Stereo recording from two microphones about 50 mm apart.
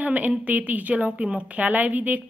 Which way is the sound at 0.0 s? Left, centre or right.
Right.